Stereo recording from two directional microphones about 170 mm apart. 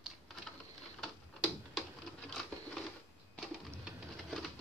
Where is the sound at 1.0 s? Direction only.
Centre (ahead or behind).